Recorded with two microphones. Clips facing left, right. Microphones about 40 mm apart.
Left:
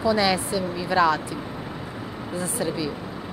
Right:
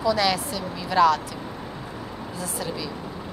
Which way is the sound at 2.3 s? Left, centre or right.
Left.